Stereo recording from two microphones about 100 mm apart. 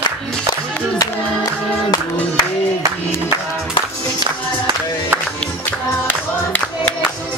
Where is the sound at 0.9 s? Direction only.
40° left (ahead or behind).